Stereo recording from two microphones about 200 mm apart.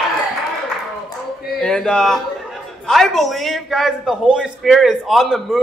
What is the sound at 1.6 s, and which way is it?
A man's voice, 5° left (ahead or behind).